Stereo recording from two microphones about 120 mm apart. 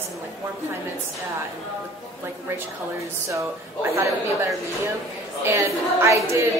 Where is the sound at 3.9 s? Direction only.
25° right (ahead or behind).